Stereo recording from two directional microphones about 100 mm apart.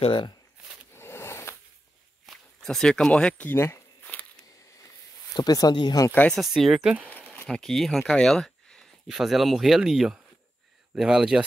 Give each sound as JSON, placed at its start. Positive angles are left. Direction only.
{"t": 0.0, "sound": "speech", "side_deg": 60}
{"t": 0.9, "sound": "a sound", "side_deg": 25}
{"t": 2.2, "sound": "speech", "side_deg": 5}
{"t": 3.4, "sound": "a sound", "side_deg": 25}
{"t": 5.3, "sound": "speech", "side_deg": 40}
{"t": 6.3, "sound": "speech", "side_deg": 0}
{"t": 7.4, "sound": "speech", "side_deg": 5}